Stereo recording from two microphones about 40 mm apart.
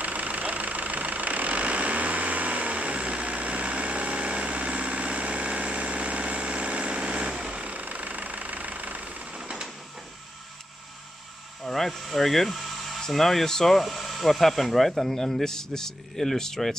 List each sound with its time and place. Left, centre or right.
0.0 s vehicle: right
7.6 s vehicle: right
9.3 s printer: centre
11.6 s a sound: centre
13.1 s speech: centre